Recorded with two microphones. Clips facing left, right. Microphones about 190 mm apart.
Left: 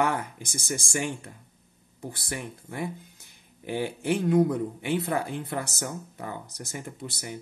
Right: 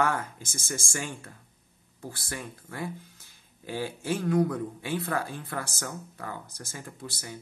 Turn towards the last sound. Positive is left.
turn(degrees=20)  # may be behind; listen again after turning